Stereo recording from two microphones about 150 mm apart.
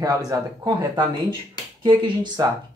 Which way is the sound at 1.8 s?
30° right (ahead or behind).